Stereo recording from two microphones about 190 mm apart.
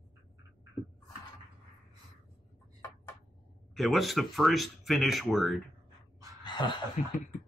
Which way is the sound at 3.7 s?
Centre (ahead or behind).